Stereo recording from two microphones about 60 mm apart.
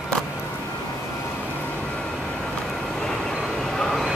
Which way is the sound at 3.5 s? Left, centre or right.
Centre.